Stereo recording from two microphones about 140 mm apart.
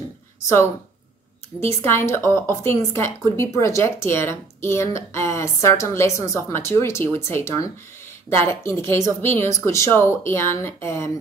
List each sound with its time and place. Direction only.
1.8 s a woman's voice: 15° left (ahead or behind)